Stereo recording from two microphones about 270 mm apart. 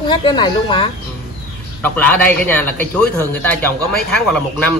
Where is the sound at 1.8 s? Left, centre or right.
Centre.